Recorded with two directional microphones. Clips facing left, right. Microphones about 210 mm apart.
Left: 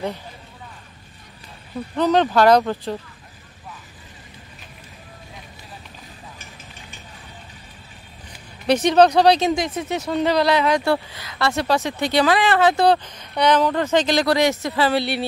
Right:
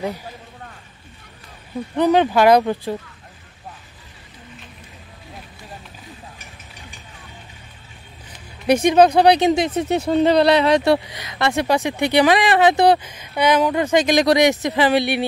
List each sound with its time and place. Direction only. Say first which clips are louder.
2.0 s speech: right 2 dB; 10° right (ahead or behind)
8.6 s speech: right 1 dB; 10° right (ahead or behind)